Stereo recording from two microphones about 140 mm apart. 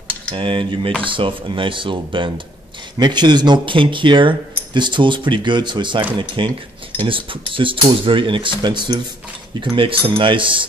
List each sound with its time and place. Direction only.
0.3 s speech: 35° right (ahead or behind)